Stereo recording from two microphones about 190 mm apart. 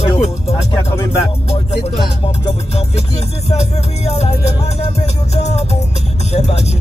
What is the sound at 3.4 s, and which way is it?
Speech, 35° left (ahead or behind).